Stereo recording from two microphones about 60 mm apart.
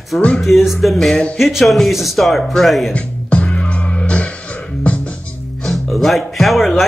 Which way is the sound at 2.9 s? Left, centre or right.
Left.